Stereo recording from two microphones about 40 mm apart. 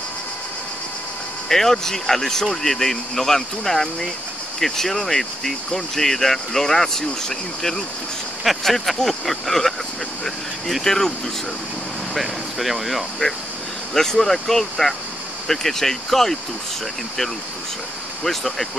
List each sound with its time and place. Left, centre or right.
1.5 s speech: centre
10.8 s speech: centre
12.1 s speech: centre
13.2 s speech: left
13.9 s speech: centre
18.2 s speech: centre